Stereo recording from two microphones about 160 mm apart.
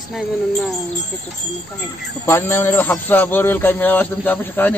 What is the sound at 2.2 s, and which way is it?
A man's voice, 15° left (ahead or behind).